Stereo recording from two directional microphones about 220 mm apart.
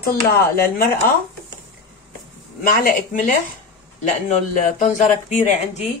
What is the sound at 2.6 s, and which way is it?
Speech, 40° left (ahead or behind).